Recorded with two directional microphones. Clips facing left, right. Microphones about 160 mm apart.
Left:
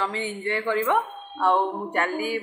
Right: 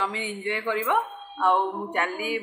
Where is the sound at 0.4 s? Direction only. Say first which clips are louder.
Left 3 dB; 15° right (ahead or behind).